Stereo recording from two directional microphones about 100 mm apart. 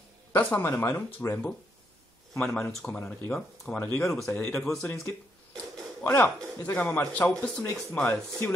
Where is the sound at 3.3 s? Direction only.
5° left (ahead or behind).